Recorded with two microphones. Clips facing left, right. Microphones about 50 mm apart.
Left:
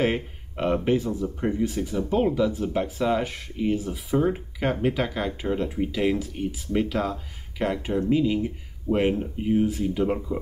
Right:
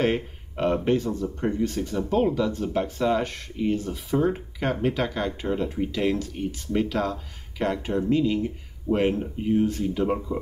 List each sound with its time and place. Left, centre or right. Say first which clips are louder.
0.0 s speech: even; centre